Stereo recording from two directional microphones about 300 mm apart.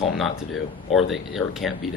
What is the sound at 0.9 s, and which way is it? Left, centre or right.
Speech, centre.